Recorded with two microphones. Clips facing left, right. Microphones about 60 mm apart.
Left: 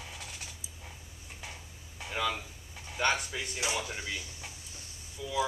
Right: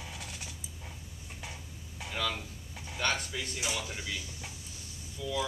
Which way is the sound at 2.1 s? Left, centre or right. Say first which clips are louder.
Left 2 dB; centre.